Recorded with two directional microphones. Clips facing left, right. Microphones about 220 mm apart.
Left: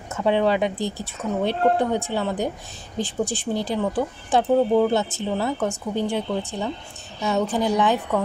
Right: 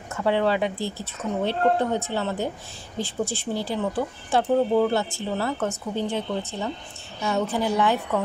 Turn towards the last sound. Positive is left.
turn(degrees=15)  # may be behind; listen again after turning